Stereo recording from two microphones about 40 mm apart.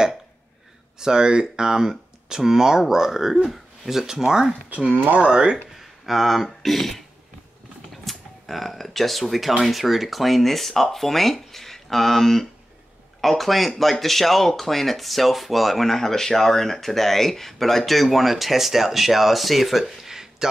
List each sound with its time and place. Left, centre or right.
0.9 s speech: centre
5.8 s speech: centre